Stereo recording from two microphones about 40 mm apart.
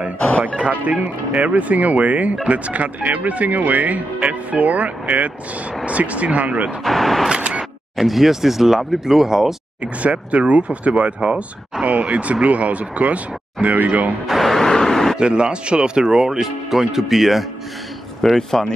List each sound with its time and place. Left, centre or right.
0.6 s speech: right
6.8 s speech: centre
7.2 s single-lens reflex camera: right
8.0 s speech: centre
10.0 s speech: right
14.2 s speech: centre
14.7 s vehicle: centre
15.1 s speech: right; by 17.5 s centre
18.3 s speech: centre